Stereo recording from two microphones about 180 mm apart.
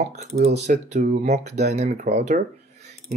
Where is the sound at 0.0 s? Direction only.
40° right (ahead or behind).